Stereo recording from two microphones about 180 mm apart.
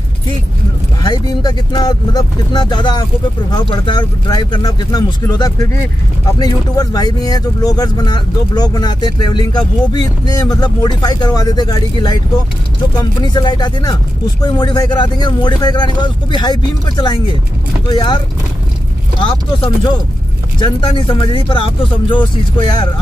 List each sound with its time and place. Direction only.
1.0 s speech: 20° left (ahead or behind)